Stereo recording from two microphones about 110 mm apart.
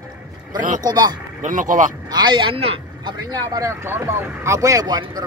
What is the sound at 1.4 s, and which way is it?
Speech, 90° right.